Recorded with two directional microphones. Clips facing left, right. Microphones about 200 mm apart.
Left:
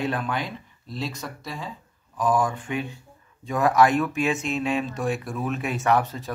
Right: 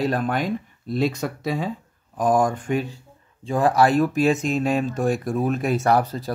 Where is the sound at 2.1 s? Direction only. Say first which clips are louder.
Right 4 dB; 50° right (ahead or behind).